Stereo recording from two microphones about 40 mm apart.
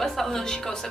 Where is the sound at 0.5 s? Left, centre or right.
Left.